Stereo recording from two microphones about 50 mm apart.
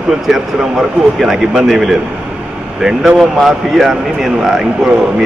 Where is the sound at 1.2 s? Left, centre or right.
Centre.